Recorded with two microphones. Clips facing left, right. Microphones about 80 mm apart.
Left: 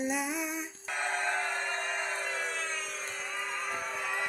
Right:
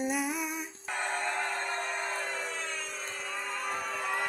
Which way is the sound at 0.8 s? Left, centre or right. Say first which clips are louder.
Even; right.